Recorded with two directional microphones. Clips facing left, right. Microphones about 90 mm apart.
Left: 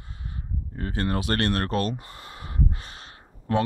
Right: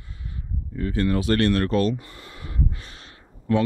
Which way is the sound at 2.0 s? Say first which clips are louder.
Even; 35° left (ahead or behind).